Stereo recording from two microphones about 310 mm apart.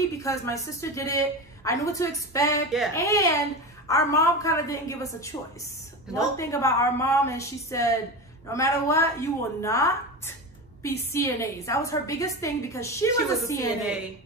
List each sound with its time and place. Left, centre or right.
0.2 s a woman's voice: centre
6.3 s a woman's voice: centre